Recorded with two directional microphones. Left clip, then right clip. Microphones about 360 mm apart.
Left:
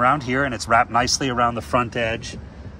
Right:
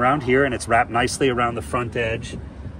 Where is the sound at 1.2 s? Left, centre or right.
Left.